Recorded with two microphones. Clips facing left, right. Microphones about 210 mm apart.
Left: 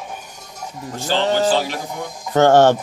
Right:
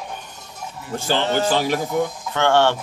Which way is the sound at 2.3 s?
40° left (ahead or behind).